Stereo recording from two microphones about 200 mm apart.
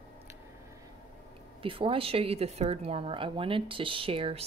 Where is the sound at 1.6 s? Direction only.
25° right (ahead or behind).